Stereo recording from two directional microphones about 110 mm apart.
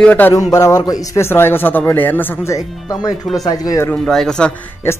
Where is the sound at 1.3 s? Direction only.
20° left (ahead or behind).